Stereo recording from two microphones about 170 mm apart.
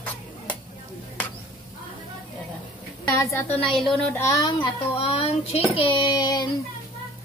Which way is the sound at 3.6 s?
30° left (ahead or behind).